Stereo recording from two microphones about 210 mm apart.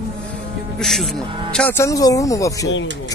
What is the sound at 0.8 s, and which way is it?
Speech, centre (ahead or behind).